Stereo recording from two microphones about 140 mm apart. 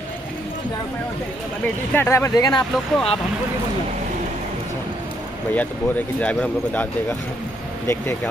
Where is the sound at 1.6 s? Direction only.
15° left (ahead or behind); by 2.7 s 30° left (ahead or behind).